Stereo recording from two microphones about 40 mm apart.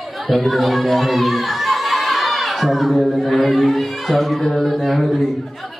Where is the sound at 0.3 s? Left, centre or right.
Centre.